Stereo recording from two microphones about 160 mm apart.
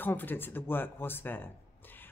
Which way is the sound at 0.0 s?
10° left (ahead or behind).